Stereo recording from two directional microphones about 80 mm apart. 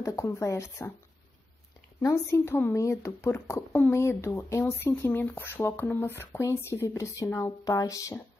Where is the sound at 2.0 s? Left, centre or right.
Left.